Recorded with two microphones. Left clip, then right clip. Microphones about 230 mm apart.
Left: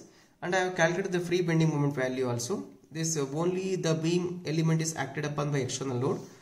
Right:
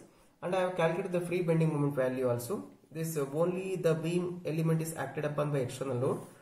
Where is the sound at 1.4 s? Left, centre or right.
Left.